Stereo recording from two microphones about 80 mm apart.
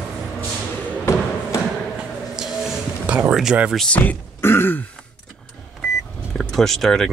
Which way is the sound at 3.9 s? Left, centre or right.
Left.